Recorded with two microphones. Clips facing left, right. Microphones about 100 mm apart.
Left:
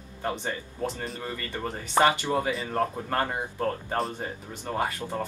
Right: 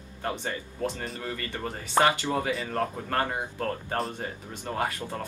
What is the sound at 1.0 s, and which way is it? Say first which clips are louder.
Speech: even; centre (ahead or behind).